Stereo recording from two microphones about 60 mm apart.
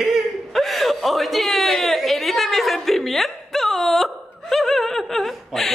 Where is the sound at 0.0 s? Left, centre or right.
Centre.